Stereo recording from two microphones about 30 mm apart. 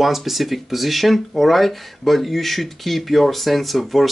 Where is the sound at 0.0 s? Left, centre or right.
Centre.